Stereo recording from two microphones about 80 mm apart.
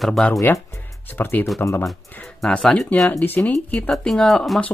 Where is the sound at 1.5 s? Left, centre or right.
Left.